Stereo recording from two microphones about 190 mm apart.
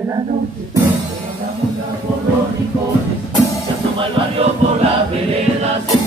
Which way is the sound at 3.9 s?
30° right (ahead or behind).